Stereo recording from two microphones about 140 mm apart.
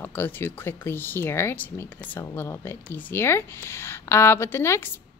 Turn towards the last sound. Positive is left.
turn(degrees=15)  # may be behind; listen again after turning